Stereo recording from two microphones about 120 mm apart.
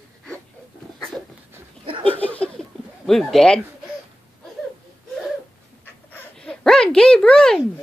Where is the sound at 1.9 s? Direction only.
50° right (ahead or behind).